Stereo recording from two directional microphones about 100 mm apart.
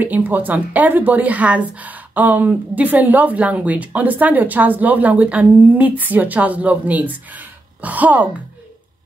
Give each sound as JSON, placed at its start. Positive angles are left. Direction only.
{"t": 0.0, "sound": "a woman's voice", "side_deg": -15}